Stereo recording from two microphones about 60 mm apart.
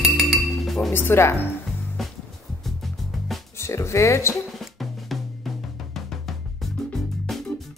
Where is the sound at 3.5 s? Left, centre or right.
Left.